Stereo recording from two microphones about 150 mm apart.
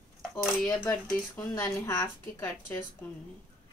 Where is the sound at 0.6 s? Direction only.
15° left (ahead or behind).